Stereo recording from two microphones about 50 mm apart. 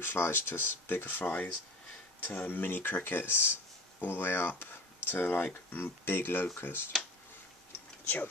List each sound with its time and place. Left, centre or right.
0.0 s speech: left